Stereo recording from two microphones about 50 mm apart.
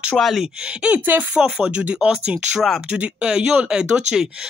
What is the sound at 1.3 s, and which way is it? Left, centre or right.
Speech, centre.